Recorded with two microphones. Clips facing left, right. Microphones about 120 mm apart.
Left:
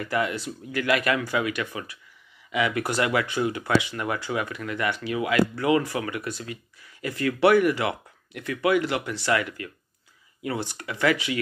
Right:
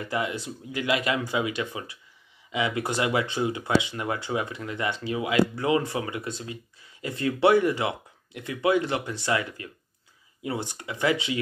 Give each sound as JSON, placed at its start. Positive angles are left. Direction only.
{"t": 0.0, "sound": "speech", "side_deg": -20}